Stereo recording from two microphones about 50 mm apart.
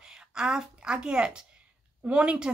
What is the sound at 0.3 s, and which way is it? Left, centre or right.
A woman's voice, centre.